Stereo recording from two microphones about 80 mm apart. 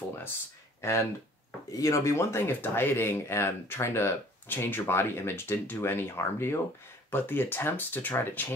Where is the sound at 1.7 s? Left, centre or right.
Left.